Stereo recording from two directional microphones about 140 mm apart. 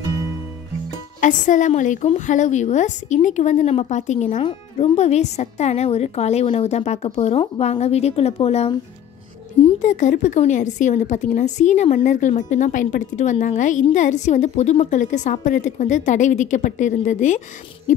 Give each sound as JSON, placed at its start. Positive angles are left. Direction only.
{"t": 0.8, "sound": "music", "side_deg": 65}
{"t": 1.7, "sound": "speech", "side_deg": 60}
{"t": 9.8, "sound": "speech", "side_deg": 60}
{"t": 17.9, "sound": "hoot", "side_deg": 60}